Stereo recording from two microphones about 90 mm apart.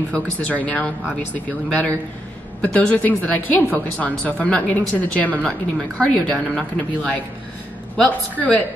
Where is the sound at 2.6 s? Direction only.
15° left (ahead or behind).